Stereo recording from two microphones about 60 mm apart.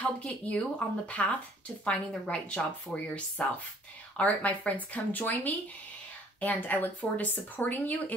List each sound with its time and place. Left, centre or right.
0.0 s speech: left